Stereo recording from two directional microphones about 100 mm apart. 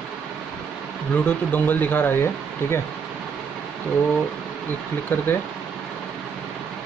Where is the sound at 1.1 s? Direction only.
20° left (ahead or behind).